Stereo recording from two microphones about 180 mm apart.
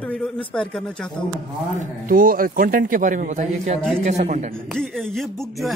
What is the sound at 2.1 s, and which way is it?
A man's voice, 50° right (ahead or behind).